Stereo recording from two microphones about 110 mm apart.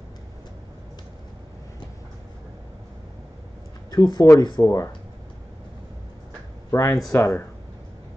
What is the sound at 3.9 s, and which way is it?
Speech, 35° left (ahead or behind).